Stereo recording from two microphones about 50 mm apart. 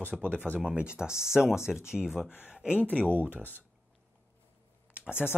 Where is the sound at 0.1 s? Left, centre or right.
Left.